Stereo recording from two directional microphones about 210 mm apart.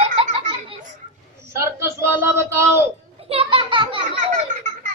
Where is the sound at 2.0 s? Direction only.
15° right (ahead or behind).